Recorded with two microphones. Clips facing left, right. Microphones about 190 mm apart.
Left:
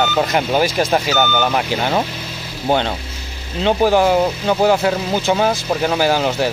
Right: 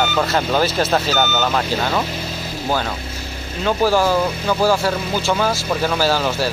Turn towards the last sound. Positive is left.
turn(degrees=20)  # may be behind; listen again after turning